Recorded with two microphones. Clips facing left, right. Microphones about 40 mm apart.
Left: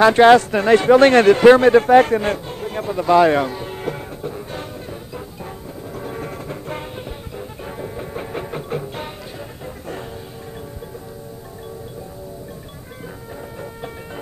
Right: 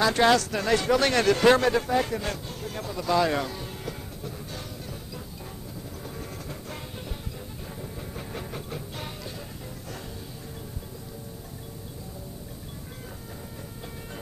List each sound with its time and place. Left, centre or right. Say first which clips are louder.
0.0 s speech: left 11 dB; left
1.8 s a sound: left 14 dB; left
5.9 s music: left 12 dB; left
7.6 s music: left 10 dB; left